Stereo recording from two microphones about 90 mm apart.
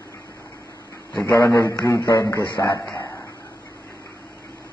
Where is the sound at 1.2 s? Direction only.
25° left (ahead or behind).